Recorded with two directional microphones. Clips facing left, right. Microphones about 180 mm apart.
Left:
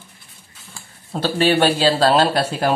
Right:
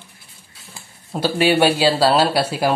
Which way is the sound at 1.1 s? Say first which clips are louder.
Even; 10° right (ahead or behind).